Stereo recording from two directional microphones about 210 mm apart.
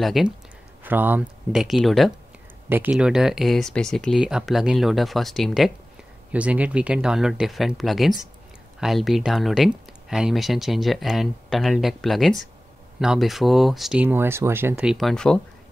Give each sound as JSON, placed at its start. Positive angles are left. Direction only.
{"t": 0.0, "sound": "speech", "side_deg": 0}